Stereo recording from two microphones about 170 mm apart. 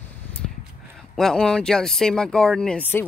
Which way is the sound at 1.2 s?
5° left (ahead or behind).